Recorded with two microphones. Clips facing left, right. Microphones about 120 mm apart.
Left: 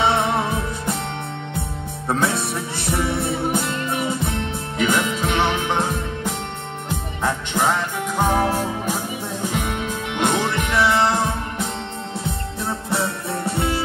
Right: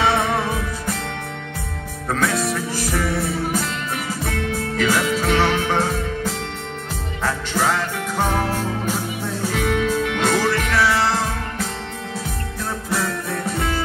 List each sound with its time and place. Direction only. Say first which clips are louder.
0.0 s music: even; 25° left (ahead or behind)
2.0 s music: right 1 dB; 25° left (ahead or behind)
8.2 s music: left 2 dB; 15° left (ahead or behind); by 13.7 s 30° left (ahead or behind)